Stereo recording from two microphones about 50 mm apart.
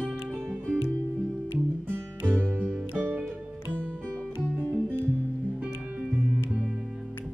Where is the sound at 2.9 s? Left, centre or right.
Right.